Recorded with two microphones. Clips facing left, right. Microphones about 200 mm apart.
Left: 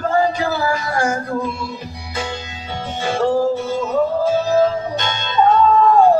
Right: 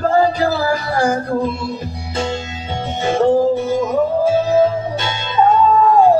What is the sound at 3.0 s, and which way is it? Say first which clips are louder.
Music: right 4 dB; 20° right (ahead or behind).